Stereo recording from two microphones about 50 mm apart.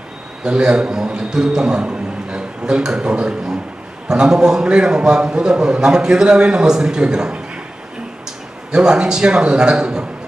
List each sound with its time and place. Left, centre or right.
0.4 s a man's voice: centre
8.7 s a man's voice: centre